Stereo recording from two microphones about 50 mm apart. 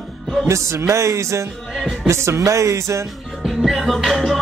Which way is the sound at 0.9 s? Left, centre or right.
Right.